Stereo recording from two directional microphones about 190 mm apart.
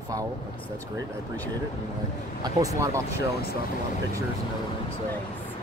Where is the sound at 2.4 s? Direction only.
15° right (ahead or behind).